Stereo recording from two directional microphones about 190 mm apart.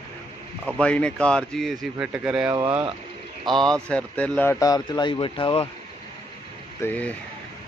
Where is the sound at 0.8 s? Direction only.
5° left (ahead or behind); by 5.7 s 30° left (ahead or behind).